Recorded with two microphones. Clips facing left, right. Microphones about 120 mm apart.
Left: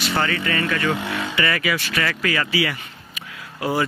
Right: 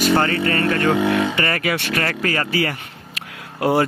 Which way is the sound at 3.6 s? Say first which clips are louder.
Right 5 dB; 60° right (ahead or behind).